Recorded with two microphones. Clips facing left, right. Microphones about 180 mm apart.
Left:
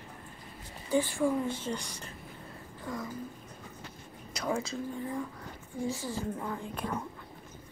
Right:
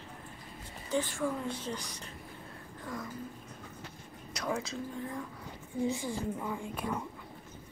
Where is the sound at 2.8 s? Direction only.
Centre (ahead or behind).